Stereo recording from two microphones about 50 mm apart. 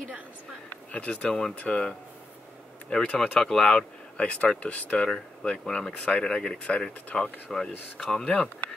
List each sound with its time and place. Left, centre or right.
0.9 s speech: left
3.3 s speech: centre
3.6 s speech: left